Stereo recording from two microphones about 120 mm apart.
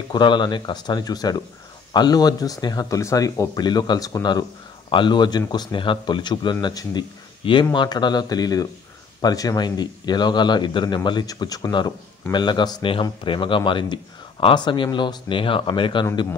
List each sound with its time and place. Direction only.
0.1 s speech: 40° left (ahead or behind)